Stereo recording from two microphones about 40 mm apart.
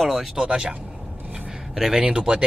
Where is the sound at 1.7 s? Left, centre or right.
Centre.